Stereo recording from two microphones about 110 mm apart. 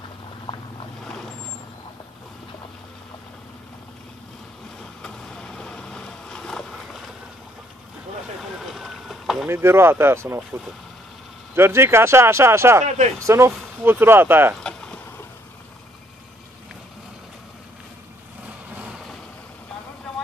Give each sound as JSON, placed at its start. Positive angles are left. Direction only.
{"t": 5.0, "sound": "vehicle", "side_deg": 5}
{"t": 8.4, "sound": "boat", "side_deg": 0}
{"t": 9.5, "sound": "speech", "side_deg": -25}
{"t": 11.5, "sound": "speech", "side_deg": -20}
{"t": 12.8, "sound": "speech", "side_deg": -90}
{"t": 13.2, "sound": "speech", "side_deg": -25}
{"t": 14.6, "sound": "boat", "side_deg": 10}